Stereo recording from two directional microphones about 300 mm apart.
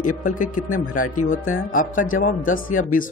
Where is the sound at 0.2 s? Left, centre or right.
Left.